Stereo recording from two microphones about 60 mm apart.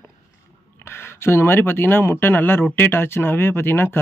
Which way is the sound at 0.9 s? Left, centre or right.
Left.